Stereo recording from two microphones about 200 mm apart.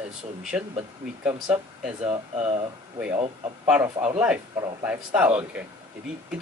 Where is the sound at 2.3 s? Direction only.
30° right (ahead or behind).